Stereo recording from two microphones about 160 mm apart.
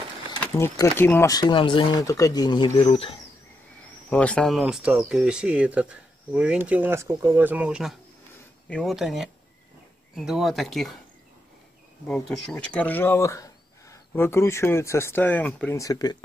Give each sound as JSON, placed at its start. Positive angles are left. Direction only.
{"t": 0.4, "sound": "speech", "side_deg": 15}
{"t": 4.1, "sound": "speech", "side_deg": 5}
{"t": 12.1, "sound": "speech", "side_deg": 5}
{"t": 15.8, "sound": "speech", "side_deg": 25}